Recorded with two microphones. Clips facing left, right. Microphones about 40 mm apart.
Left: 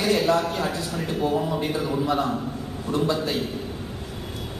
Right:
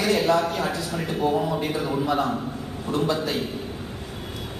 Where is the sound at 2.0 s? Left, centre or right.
Right.